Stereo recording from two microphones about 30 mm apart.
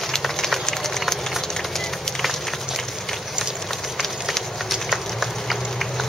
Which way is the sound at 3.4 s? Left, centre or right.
Centre.